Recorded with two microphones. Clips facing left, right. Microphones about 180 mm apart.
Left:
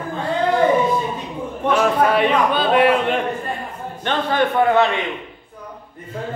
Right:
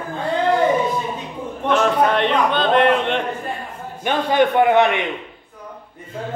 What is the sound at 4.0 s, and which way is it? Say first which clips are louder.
A man's voice: right 2 dB; 15° right (ahead or behind).